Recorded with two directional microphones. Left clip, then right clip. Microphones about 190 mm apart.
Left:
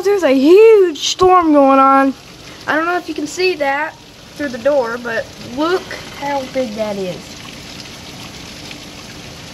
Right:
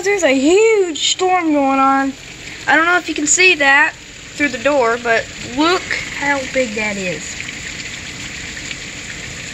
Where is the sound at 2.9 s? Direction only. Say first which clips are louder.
Right 5 dB; 10° right (ahead or behind).